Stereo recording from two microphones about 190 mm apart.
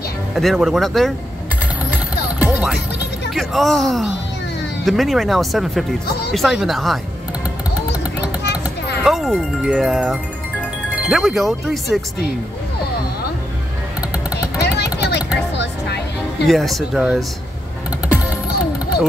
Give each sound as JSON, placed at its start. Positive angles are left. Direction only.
{"t": 0.4, "sound": "speech", "side_deg": 0}
{"t": 2.3, "sound": "music", "side_deg": -5}
{"t": 3.3, "sound": "speech", "side_deg": 0}
{"t": 9.0, "sound": "speech", "side_deg": 0}
{"t": 14.6, "sound": "vehicle", "side_deg": 60}
{"t": 16.4, "sound": "speech", "side_deg": 0}